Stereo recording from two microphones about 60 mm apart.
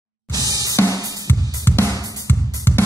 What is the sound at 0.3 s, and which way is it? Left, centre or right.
Music, right.